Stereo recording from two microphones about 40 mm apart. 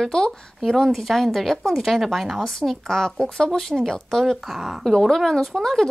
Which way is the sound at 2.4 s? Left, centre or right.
Centre.